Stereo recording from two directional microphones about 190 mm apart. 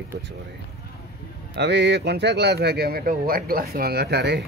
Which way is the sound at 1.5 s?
65° right (ahead or behind).